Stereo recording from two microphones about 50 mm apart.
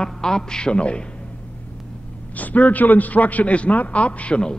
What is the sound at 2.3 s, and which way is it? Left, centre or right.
A man's voice, left.